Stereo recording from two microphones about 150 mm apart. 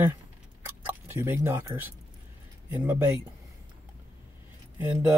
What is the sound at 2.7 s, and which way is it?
Speech, 15° right (ahead or behind).